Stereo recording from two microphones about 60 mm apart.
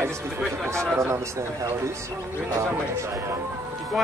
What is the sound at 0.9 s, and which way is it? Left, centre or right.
Speech, right.